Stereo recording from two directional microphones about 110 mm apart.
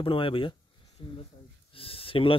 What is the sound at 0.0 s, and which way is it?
Speech, 55° left (ahead or behind).